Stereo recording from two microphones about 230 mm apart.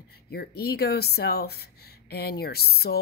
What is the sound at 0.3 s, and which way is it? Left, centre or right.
Speech, left.